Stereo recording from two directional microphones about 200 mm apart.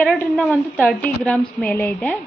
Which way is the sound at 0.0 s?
Centre (ahead or behind).